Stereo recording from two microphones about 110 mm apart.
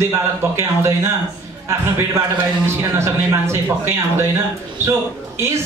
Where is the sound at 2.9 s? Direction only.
25° right (ahead or behind).